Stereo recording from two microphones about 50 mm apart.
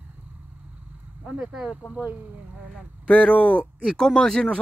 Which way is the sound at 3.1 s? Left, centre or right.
Left.